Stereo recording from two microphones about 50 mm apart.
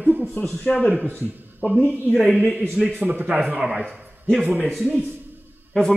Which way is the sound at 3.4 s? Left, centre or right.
Centre.